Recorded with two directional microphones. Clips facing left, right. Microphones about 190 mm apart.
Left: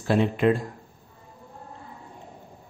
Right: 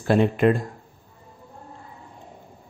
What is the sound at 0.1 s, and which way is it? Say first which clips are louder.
Speech: right 3 dB; 50° right (ahead or behind).